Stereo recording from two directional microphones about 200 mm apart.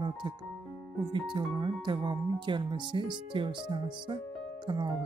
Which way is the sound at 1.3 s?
25° right (ahead or behind).